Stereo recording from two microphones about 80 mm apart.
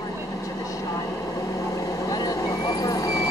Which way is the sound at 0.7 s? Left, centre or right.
Left.